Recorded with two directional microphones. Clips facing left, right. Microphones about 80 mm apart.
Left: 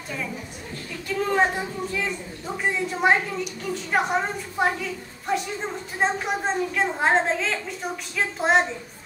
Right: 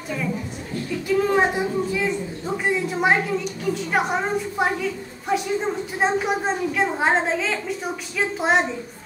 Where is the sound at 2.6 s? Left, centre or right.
Centre.